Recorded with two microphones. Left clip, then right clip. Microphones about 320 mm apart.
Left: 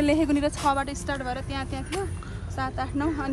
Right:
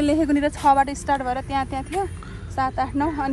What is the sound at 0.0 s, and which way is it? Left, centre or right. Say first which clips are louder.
A woman's voice: right 3 dB; right.